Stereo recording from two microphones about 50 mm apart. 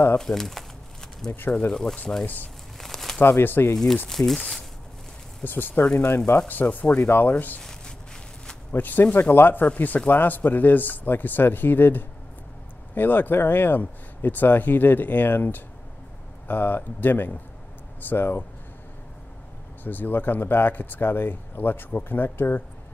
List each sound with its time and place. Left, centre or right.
0.2 s speech: centre
2.8 s crumpling: centre
3.2 s speech: left
3.7 s speech: centre
5.4 s speech: left
6.4 s speech: left
7.0 s speech: left
7.2 s speech: left
8.7 s speech: left
19.8 s speech: left